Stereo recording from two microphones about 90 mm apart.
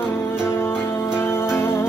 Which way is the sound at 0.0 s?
25° left (ahead or behind).